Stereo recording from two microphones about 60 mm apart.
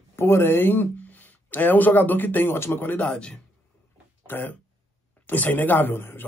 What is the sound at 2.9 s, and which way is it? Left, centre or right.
Speech, centre.